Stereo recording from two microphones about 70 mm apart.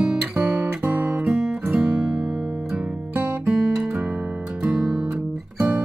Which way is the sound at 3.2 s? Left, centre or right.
Right.